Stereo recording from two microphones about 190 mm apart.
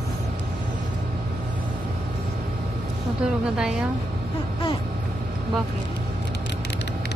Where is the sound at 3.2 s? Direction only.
5° right (ahead or behind).